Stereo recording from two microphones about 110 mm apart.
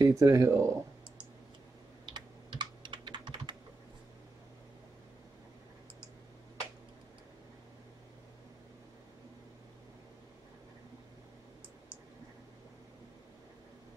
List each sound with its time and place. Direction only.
0.0 s speech: 35° right (ahead or behind)
2.0 s typing: 45° right (ahead or behind)